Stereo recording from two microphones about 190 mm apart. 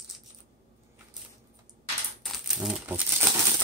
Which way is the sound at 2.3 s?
Centre (ahead or behind).